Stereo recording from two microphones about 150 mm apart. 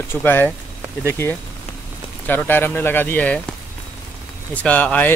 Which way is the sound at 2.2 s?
15° left (ahead or behind).